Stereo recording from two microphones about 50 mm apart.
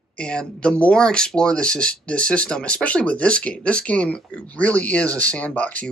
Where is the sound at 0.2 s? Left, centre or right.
Centre.